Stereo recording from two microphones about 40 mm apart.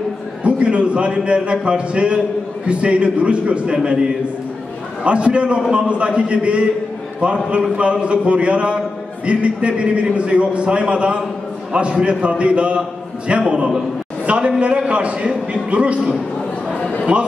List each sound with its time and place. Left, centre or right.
0.4 s a man's voice: right
7.7 s a man's voice: right